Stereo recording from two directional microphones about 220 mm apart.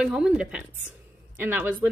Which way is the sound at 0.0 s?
5° right (ahead or behind).